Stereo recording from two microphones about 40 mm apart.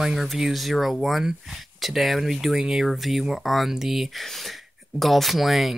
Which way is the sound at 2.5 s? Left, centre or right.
Centre.